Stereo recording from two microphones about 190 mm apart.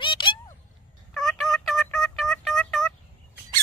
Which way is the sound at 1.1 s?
Centre (ahead or behind).